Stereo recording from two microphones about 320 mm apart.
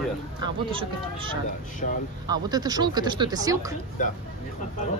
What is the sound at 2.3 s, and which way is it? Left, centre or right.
Speech, centre.